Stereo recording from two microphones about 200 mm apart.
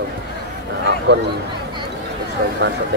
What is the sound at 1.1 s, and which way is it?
Speech, 55° right (ahead or behind).